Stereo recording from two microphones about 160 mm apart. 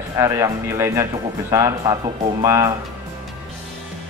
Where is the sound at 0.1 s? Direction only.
20° right (ahead or behind).